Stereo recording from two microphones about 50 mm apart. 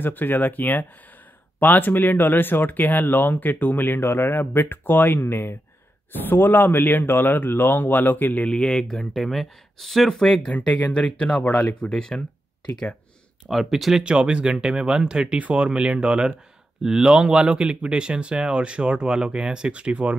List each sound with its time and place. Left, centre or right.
0.0 s speech: left
6.1 s speech: left
8.5 s speech: centre
10.3 s speech: left
13.5 s speech: centre
14.0 s speech: centre